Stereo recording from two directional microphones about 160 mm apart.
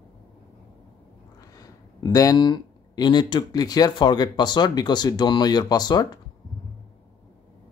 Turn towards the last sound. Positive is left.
turn(degrees=25)  # may be behind; listen again after turning